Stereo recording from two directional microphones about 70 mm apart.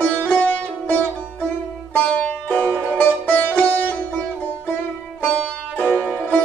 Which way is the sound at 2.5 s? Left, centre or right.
Centre.